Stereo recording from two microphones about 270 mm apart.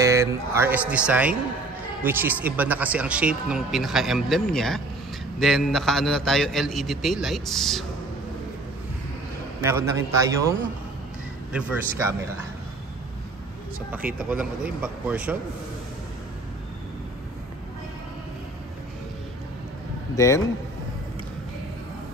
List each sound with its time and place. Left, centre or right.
0.0 s a man's voice: centre
9.6 s a man's voice: centre
11.5 s a man's voice: centre
13.9 s speech: centre
20.2 s a man's voice: centre